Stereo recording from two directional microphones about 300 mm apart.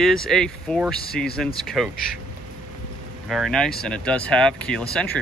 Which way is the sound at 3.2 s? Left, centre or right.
Centre.